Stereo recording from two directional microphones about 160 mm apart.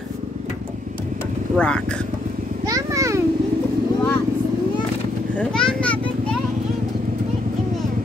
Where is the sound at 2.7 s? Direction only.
20° right (ahead or behind).